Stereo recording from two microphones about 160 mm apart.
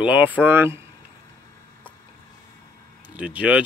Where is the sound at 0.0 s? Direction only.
10° right (ahead or behind).